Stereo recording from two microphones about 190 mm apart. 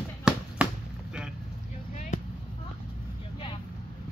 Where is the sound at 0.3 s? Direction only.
5° right (ahead or behind).